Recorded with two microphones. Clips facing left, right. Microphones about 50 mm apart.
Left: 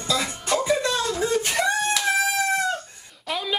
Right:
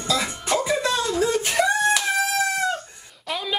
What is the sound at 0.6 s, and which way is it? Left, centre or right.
Music, centre.